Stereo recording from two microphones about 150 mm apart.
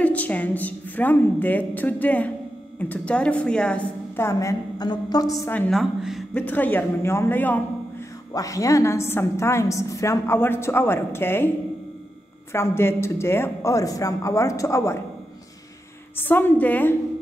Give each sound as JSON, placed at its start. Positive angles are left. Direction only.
{"t": 0.0, "sound": "a woman's voice", "side_deg": 10}
{"t": 4.3, "sound": "speech", "side_deg": 20}
{"t": 5.7, "sound": "a woman's voice", "side_deg": 0}
{"t": 6.3, "sound": "a woman's voice", "side_deg": 10}
{"t": 8.3, "sound": "a woman's voice", "side_deg": 20}
{"t": 12.5, "sound": "speech", "side_deg": 15}
{"t": 16.2, "sound": "a woman's voice", "side_deg": 15}